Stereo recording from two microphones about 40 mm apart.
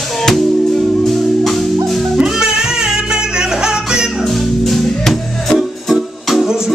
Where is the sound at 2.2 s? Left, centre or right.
Centre.